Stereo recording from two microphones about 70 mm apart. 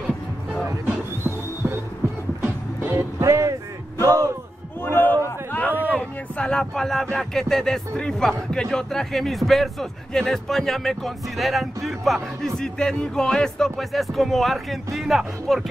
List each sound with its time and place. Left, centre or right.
1.2 s music: right
2.8 s music: right
4.8 s chatter: left
5.9 s a sound: centre
7.2 s speech: centre
12.5 s music: centre
15.0 s speech: centre